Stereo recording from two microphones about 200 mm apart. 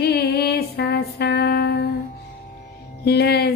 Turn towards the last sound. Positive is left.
turn(degrees=55)  # may be behind; listen again after turning